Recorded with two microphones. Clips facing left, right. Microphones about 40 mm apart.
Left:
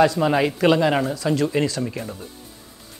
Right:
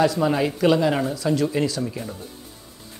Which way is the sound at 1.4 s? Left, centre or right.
Left.